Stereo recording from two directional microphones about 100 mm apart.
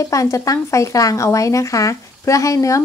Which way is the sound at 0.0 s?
30° left (ahead or behind).